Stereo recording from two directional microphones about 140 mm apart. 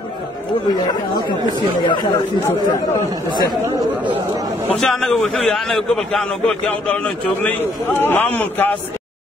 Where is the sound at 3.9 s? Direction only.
10° right (ahead or behind).